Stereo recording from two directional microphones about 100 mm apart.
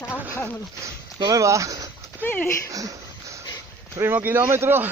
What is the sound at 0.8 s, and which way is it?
Speech, 30° right (ahead or behind).